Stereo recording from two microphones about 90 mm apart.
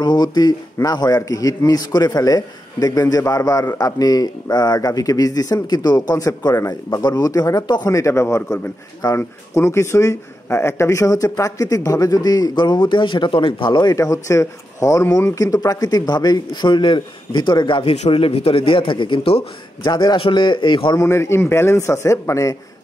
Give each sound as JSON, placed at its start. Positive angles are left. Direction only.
{"t": 0.0, "sound": "a man's voice", "side_deg": 55}
{"t": 7.9, "sound": "a man's voice", "side_deg": 30}
{"t": 13.9, "sound": "a man's voice", "side_deg": 35}
{"t": 19.9, "sound": "a man's voice", "side_deg": 50}
{"t": 20.2, "sound": "speech", "side_deg": 65}
{"t": 20.9, "sound": "a man's voice", "side_deg": 35}